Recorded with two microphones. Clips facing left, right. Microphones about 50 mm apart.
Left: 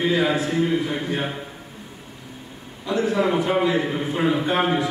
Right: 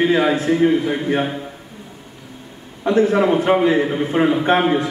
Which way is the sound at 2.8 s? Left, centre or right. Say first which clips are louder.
Right 6 dB; right.